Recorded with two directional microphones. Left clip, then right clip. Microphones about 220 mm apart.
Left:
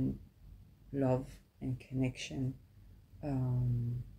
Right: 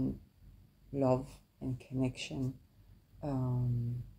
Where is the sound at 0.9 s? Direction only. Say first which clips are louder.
Right 2 dB; 20° right (ahead or behind).